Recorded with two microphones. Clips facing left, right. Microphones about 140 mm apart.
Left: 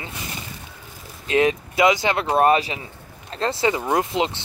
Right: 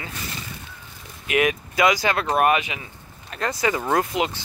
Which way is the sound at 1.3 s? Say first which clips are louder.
Left 3 dB; 30° left (ahead or behind).